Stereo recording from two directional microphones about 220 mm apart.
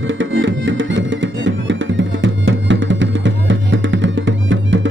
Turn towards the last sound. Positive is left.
turn(degrees=-55)  # may be behind; listen again after turning